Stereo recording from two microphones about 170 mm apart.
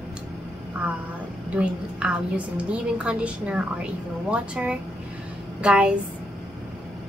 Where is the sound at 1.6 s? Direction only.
5° right (ahead or behind).